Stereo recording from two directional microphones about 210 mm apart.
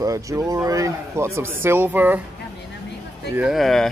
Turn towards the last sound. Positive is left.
turn(degrees=0)  # may be behind; listen again after turning